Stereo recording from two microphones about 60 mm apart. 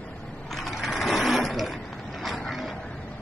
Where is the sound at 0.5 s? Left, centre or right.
Centre.